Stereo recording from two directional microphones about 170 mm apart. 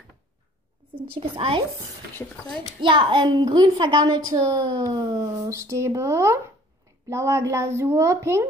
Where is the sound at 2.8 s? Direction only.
30° right (ahead or behind).